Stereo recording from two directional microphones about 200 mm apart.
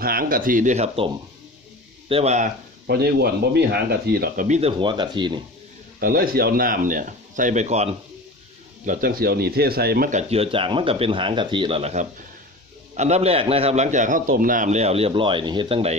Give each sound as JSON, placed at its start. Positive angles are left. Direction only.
{"t": 0.0, "sound": "speech", "side_deg": -45}
{"t": 2.9, "sound": "speech", "side_deg": -55}
{"t": 4.5, "sound": "speech", "side_deg": -30}
{"t": 5.9, "sound": "speech", "side_deg": -45}